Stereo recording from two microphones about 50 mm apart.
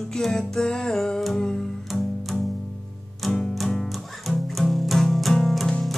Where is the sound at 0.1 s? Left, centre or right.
Centre.